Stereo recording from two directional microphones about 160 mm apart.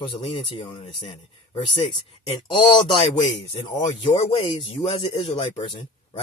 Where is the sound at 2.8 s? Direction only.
35° left (ahead or behind).